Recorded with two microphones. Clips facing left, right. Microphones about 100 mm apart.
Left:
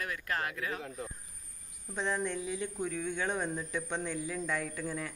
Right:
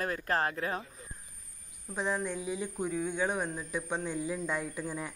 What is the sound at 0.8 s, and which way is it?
Speech, 75° left (ahead or behind).